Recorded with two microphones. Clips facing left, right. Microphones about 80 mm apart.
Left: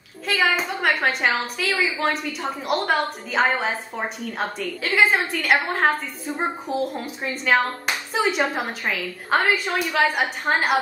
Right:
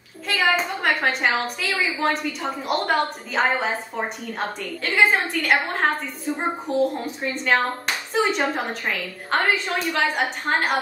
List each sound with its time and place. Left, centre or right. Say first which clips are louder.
0.3 s a woman's voice: even; centre